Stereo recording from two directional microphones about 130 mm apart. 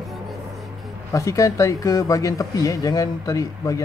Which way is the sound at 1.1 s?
25° left (ahead or behind).